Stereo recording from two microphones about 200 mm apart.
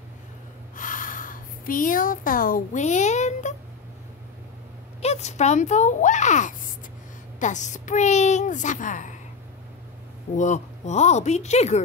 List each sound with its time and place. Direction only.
0.7 s speech: 40° left (ahead or behind)
5.0 s a woman's voice: 35° left (ahead or behind)
10.3 s a woman's voice: 35° left (ahead or behind)